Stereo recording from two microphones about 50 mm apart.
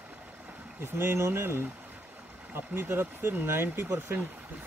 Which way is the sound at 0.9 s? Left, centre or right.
Right.